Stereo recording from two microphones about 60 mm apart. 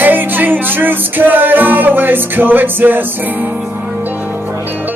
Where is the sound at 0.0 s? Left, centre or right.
Right.